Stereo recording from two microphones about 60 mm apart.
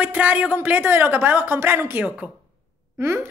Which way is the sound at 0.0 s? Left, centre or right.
Right.